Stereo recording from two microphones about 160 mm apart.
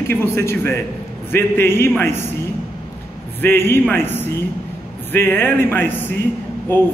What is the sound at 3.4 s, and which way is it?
A man's voice, 15° left (ahead or behind).